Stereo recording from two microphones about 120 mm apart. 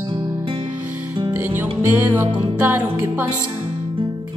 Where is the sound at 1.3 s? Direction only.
15° right (ahead or behind).